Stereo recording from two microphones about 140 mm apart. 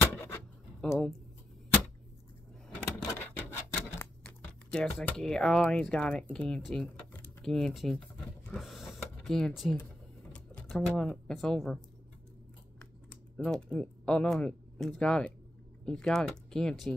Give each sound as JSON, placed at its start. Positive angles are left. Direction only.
{"t": 0.0, "sound": "a sound", "side_deg": 20}
{"t": 0.8, "sound": "speech", "side_deg": 5}
{"t": 3.1, "sound": "rub", "side_deg": 15}
{"t": 4.7, "sound": "speech", "side_deg": 5}
{"t": 8.5, "sound": "a sound", "side_deg": 0}
{"t": 10.7, "sound": "speech", "side_deg": 5}